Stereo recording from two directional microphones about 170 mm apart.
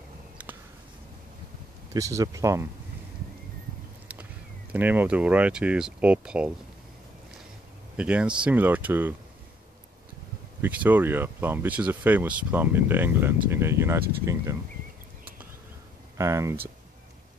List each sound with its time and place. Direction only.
2.0 s speech: 20° right (ahead or behind)
4.7 s speech: 10° right (ahead or behind)
7.9 s speech: 5° right (ahead or behind)
10.6 s speech: 10° right (ahead or behind)
16.2 s speech: 15° right (ahead or behind)